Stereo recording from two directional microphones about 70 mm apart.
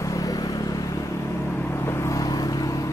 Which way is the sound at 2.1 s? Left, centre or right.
Left.